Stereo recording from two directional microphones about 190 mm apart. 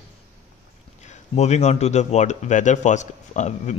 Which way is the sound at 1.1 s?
35° left (ahead or behind).